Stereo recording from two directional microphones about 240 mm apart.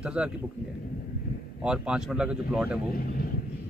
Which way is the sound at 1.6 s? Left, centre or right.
Centre.